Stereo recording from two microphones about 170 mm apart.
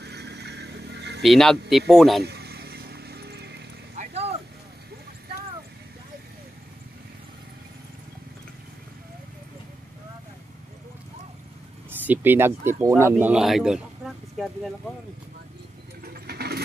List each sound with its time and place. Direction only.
0.0 s vehicle: 75° right (ahead or behind)
1.2 s speech: centre (ahead or behind)
2.2 s music: 70° right (ahead or behind)
3.9 s a sound: 45° right (ahead or behind)
12.1 s speech: 10° right (ahead or behind)
16.0 s vehicle: 65° right (ahead or behind)